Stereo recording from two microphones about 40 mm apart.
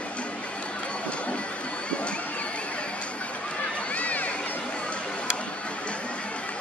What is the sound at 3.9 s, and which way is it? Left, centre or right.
Crowd, left.